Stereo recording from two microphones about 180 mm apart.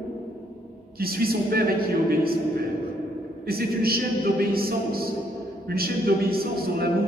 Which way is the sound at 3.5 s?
55° right (ahead or behind).